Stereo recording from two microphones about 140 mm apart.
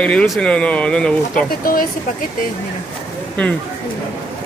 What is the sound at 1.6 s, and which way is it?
Speech, 90° left.